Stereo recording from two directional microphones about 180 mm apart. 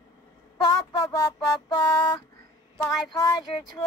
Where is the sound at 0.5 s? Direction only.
20° left (ahead or behind).